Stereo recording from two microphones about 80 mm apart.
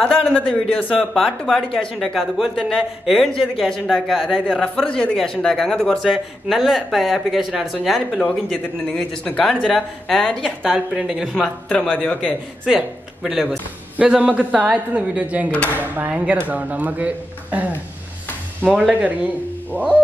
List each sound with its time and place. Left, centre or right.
0.0 s speech: centre
1.1 s speech: centre
3.9 s speech: centre
4.8 s speech: centre
8.8 s speech: centre
11.0 s speech: centre
11.3 s speech: centre
12.6 s speech: centre
18.8 s speech: centre